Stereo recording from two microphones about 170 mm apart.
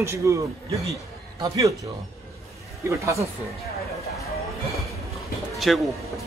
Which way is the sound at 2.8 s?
15° right (ahead or behind).